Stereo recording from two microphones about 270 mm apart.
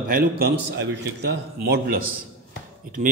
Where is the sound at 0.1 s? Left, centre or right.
Right.